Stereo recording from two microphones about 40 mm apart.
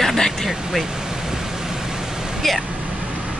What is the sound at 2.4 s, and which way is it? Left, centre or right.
Speech, centre.